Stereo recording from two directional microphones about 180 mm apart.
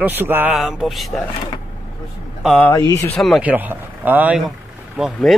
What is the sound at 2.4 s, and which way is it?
Speech, 10° left (ahead or behind).